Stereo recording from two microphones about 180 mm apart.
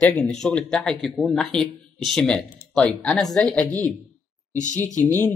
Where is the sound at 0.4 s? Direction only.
5° left (ahead or behind).